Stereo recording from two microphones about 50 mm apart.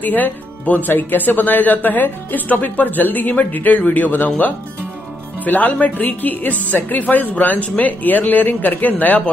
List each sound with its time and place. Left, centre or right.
0.0 s speech: left
5.4 s speech: left